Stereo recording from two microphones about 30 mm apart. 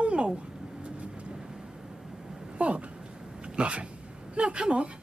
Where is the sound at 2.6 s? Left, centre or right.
Right.